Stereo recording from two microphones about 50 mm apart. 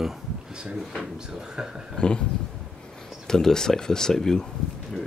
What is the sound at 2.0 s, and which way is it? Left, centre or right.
Speech, centre.